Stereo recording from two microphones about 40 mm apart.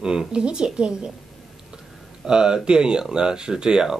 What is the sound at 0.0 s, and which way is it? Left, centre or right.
Speech, centre.